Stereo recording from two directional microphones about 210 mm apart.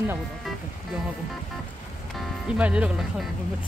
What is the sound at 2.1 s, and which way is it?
Speech, 5° right (ahead or behind).